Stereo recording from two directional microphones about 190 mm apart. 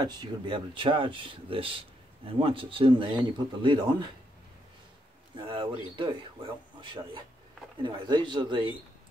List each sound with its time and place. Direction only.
0.0 s speech: 25° right (ahead or behind)
5.5 s speech: 25° right (ahead or behind)